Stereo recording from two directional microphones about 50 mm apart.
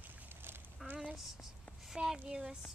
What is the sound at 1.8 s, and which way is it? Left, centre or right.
Speech, centre.